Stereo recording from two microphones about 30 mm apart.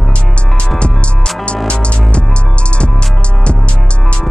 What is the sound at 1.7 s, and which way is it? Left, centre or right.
Music, left.